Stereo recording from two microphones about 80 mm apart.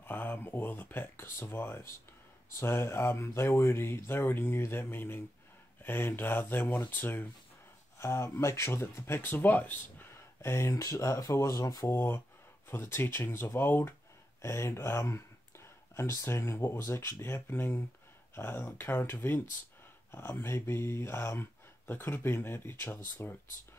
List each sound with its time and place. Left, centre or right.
0.0 s speech: left
8.0 s speech: left
11.9 s speech: left